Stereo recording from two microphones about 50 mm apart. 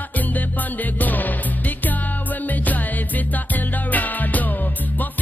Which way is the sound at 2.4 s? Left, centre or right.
Left.